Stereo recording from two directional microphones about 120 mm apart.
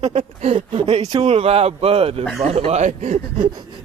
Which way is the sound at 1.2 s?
60° right (ahead or behind).